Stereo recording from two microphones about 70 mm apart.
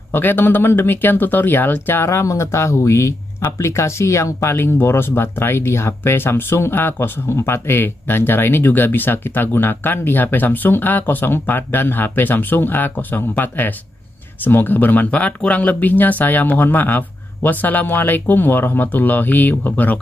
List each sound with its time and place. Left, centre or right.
0.1 s speech: left
2.0 s speech: left